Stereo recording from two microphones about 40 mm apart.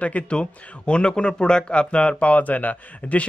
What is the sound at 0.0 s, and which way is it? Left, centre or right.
Speech, left.